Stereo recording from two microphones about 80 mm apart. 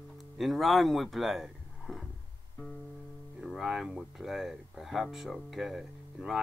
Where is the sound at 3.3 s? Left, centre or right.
Centre.